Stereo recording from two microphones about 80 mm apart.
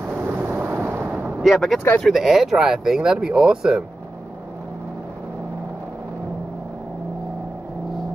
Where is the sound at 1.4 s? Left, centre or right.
Centre.